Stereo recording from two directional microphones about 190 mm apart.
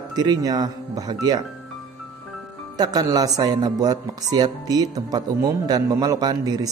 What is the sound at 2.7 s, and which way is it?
Speech, 20° right (ahead or behind).